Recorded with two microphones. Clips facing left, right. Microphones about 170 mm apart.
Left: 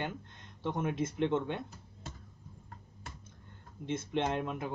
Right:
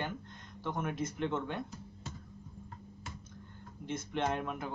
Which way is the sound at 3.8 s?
25° left (ahead or behind).